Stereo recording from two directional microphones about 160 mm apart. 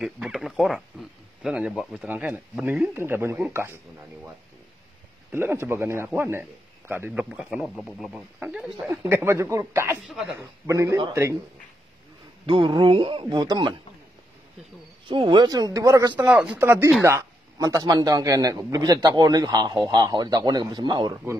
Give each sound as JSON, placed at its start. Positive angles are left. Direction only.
{"t": 0.0, "sound": "speech", "side_deg": 0}
{"t": 5.3, "sound": "speech", "side_deg": -15}
{"t": 8.1, "sound": "speech", "side_deg": -5}
{"t": 12.4, "sound": "speech", "side_deg": -30}
{"t": 15.0, "sound": "a man's voice", "side_deg": -30}
{"t": 16.3, "sound": "a man's voice", "side_deg": -5}